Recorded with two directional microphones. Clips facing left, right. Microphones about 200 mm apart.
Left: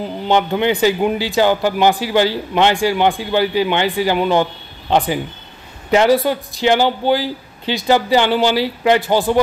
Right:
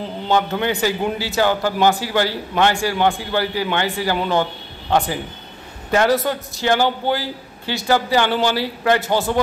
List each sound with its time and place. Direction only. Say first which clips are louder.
0.3 s speech: left 3 dB; 20° left (ahead or behind)